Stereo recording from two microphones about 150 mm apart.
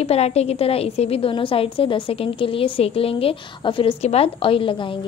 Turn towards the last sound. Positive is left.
turn(degrees=35)  # may be behind; listen again after turning